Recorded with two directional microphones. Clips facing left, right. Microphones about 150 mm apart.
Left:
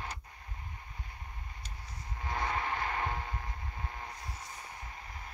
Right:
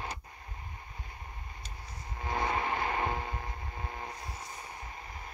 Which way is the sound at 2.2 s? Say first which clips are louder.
Right 3 dB; 15° right (ahead or behind).